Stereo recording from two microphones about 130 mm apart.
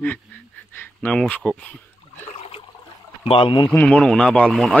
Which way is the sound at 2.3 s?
50° left (ahead or behind).